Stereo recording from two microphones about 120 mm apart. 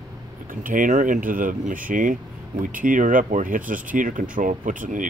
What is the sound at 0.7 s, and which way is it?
Speech, 90° right.